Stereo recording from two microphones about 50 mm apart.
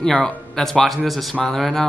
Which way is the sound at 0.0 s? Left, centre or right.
Centre.